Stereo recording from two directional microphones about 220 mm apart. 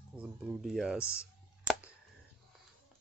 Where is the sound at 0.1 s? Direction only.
5° right (ahead or behind).